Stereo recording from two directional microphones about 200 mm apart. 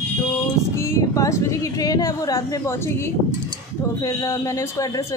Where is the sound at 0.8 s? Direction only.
15° left (ahead or behind).